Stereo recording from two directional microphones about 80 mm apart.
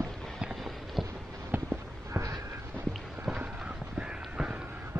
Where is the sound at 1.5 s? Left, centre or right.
Right.